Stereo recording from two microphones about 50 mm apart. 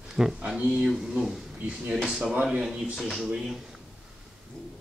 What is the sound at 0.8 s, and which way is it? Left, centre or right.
Speech, centre.